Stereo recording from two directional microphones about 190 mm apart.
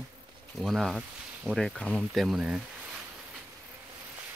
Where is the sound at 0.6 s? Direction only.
Centre (ahead or behind).